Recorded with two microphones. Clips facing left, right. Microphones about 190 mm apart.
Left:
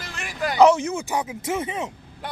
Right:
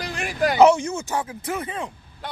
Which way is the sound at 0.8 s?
15° left (ahead or behind).